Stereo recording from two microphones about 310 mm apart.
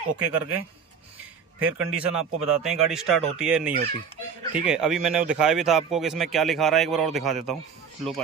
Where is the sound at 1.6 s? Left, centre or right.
Right.